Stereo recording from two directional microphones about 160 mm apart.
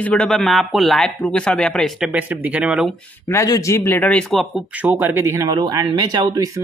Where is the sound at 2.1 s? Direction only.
10° right (ahead or behind).